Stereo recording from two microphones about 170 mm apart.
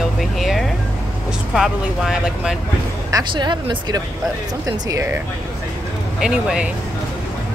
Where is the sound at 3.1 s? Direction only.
25° right (ahead or behind).